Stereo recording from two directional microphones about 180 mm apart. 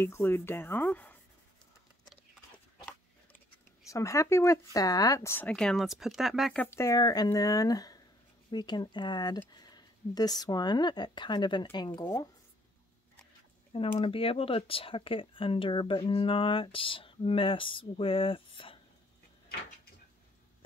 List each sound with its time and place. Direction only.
0.0 s speech: 15° left (ahead or behind)
3.9 s speech: 15° left (ahead or behind)
13.7 s speech: 30° left (ahead or behind)